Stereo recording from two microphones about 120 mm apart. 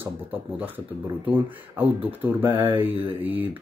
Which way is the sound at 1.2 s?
15° right (ahead or behind).